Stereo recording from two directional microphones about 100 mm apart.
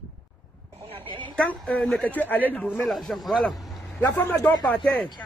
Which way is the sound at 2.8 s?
Centre (ahead or behind).